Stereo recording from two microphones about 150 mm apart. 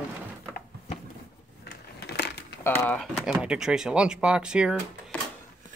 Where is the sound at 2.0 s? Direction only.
90° left.